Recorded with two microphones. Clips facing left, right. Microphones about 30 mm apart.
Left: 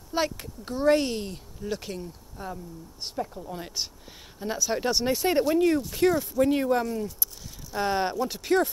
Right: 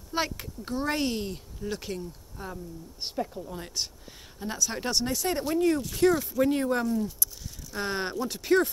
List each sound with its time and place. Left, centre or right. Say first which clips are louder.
0.1 s speech: left 2 dB; centre
5.0 s speech: left 5 dB; left
5.4 s speech: left 2 dB; centre
6.9 s speech: right 2 dB; left
7.7 s speech: left 5 dB; centre